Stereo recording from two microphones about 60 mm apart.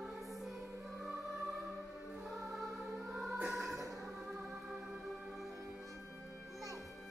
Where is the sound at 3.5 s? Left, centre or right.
Centre.